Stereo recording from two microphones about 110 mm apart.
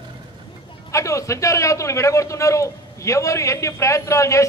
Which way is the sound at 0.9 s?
30° left (ahead or behind).